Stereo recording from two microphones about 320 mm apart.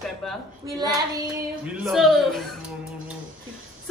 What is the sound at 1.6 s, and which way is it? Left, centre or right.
Speech, centre.